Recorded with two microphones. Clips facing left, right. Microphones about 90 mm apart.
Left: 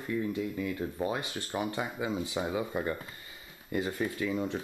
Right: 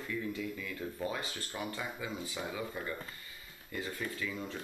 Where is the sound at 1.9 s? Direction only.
25° left (ahead or behind).